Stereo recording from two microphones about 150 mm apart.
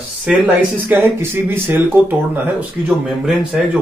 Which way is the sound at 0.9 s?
15° right (ahead or behind).